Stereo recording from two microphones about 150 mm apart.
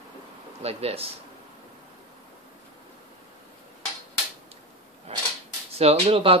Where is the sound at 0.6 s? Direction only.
40° right (ahead or behind).